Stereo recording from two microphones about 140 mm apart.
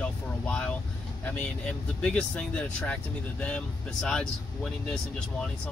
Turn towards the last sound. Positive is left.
turn(degrees=5)  # may be behind; listen again after turning